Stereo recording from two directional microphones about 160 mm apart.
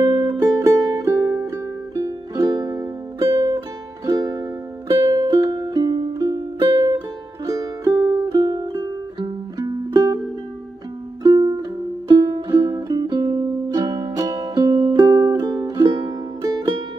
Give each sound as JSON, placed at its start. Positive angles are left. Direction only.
{"t": 0.0, "sound": "music", "side_deg": -25}
{"t": 11.2, "sound": "music", "side_deg": -25}